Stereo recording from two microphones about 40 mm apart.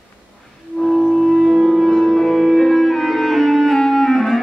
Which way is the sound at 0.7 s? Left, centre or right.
Left.